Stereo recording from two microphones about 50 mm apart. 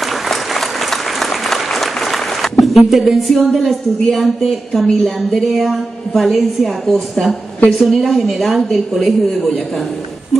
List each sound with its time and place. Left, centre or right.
0.0 s applause: centre
5.0 s a woman's voice: centre